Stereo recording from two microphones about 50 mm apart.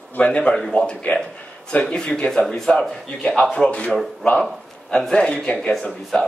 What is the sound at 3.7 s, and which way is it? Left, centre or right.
Speech, left.